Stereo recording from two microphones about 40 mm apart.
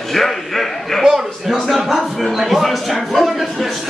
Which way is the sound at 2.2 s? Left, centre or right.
Centre.